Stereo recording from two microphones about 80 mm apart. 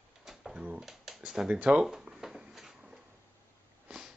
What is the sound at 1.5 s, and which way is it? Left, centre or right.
Speech, centre.